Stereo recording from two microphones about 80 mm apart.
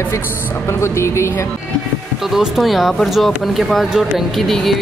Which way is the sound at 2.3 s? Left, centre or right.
Centre.